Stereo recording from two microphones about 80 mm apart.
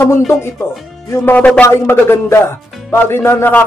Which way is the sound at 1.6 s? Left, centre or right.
Left.